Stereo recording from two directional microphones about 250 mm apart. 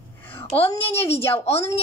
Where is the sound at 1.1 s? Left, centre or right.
Left.